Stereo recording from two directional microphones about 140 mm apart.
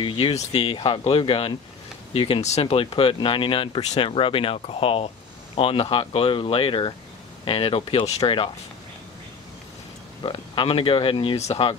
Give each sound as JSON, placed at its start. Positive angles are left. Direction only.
{"t": 0.0, "sound": "speech", "side_deg": 40}
{"t": 10.2, "sound": "speech", "side_deg": 40}